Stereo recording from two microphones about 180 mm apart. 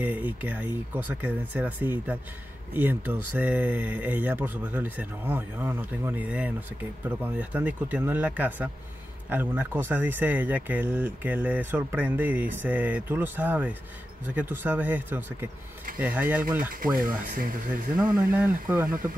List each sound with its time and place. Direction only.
0.0 s speech: 10° right (ahead or behind)
16.8 s speech: 50° right (ahead or behind)
18.0 s speech: 10° right (ahead or behind)